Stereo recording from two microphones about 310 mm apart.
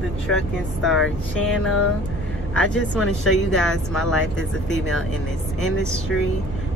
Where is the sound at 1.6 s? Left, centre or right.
Left.